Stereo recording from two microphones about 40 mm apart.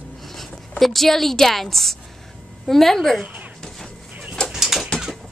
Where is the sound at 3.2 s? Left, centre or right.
Right.